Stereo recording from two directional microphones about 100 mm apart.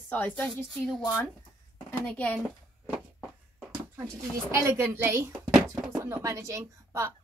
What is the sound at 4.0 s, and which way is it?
A woman's voice, 30° right (ahead or behind).